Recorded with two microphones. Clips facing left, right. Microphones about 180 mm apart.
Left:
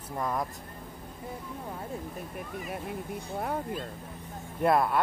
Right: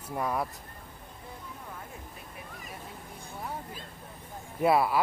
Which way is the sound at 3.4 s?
60° left (ahead or behind).